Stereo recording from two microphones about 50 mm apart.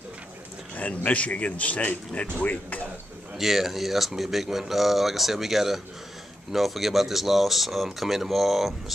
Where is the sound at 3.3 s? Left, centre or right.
Centre.